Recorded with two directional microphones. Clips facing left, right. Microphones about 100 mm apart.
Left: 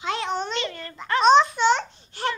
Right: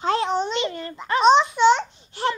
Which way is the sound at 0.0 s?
35° right (ahead or behind).